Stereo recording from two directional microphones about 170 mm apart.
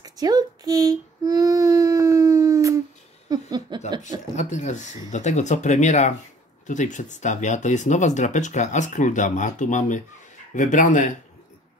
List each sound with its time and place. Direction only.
0.0 s child singing: 25° right (ahead or behind)
3.3 s a sound: 25° right (ahead or behind)
4.4 s speech: 45° left (ahead or behind)